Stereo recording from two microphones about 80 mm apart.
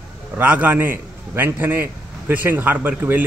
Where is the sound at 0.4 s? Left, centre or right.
Right.